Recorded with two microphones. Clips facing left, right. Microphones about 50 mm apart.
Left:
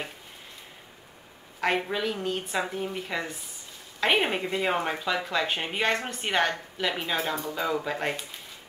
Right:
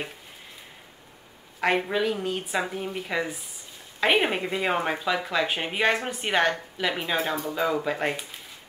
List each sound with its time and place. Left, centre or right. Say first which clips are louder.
1.6 s a woman's voice: right 3 dB; centre